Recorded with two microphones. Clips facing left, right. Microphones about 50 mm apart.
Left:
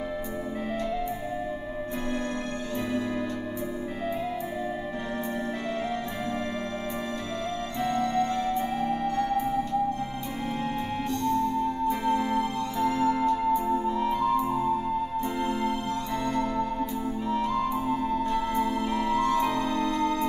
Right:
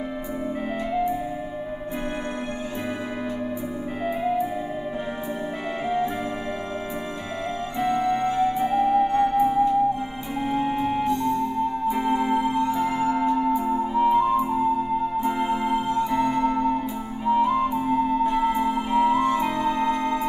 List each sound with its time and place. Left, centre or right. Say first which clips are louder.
4.0 s music: right 7 dB; centre
7.8 s music: right 4 dB; centre